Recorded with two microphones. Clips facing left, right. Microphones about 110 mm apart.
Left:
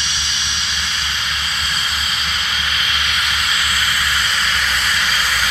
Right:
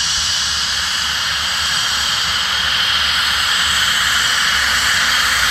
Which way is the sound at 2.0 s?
25° right (ahead or behind).